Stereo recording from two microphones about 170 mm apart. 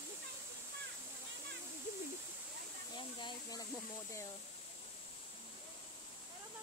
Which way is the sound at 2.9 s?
25° left (ahead or behind).